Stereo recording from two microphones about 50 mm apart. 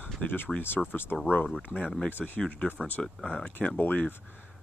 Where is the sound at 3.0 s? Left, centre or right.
Centre.